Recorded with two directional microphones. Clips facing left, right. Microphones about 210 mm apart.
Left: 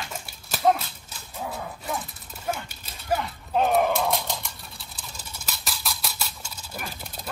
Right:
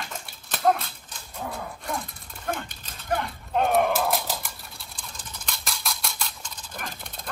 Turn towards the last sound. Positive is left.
turn(degrees=5)  # may be behind; listen again after turning